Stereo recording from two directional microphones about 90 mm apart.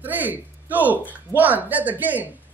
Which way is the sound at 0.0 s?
20° right (ahead or behind).